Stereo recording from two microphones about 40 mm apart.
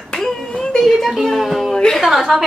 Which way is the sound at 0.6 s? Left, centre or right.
Centre.